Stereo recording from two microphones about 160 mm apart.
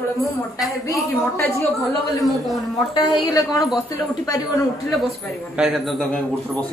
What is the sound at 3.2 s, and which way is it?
Speech, 20° left (ahead or behind).